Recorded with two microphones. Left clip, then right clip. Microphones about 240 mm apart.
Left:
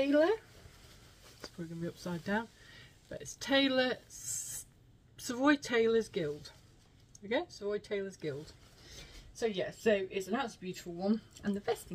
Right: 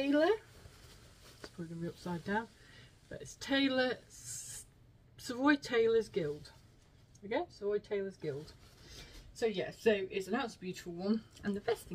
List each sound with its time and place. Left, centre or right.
0.0 s speech: centre
1.4 s speech: centre
7.6 s speech: centre
9.4 s speech: centre